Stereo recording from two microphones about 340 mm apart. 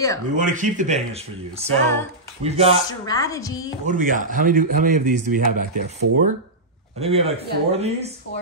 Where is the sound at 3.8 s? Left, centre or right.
Right.